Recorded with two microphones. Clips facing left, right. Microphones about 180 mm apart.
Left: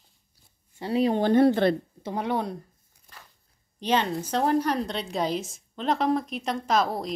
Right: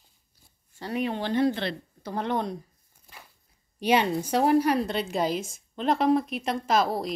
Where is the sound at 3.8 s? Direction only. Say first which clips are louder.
Right 2 dB; 10° right (ahead or behind).